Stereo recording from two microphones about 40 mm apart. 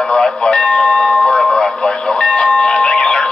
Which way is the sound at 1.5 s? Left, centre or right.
Left.